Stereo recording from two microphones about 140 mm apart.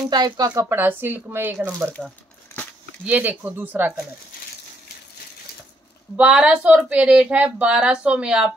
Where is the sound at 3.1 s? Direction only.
10° right (ahead or behind).